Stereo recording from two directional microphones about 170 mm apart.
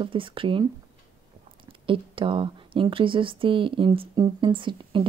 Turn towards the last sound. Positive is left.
turn(degrees=-30)  # may be behind; listen again after turning